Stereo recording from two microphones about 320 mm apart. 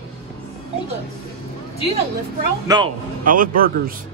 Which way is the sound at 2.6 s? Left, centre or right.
Centre.